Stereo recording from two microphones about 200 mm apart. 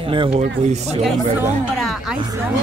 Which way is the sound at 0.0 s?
25° right (ahead or behind).